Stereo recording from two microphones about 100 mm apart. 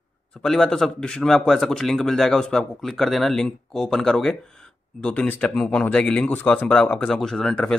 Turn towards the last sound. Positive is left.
turn(degrees=5)  # may be behind; listen again after turning